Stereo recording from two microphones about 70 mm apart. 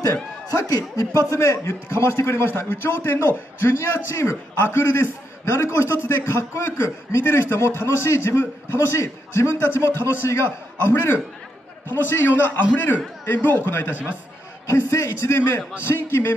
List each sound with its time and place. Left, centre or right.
0.5 s speech: left
1.3 s a man's voice: left
14.7 s a man's voice: left